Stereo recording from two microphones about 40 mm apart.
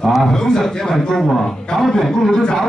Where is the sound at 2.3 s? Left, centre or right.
Centre.